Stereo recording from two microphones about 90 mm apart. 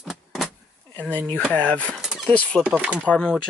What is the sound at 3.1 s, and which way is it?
Speech, 10° left (ahead or behind).